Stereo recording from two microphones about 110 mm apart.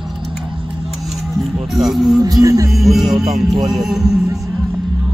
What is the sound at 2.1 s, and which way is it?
Music, 35° right (ahead or behind).